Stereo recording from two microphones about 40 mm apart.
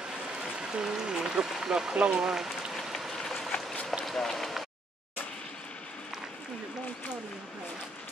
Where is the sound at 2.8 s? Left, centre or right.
Centre.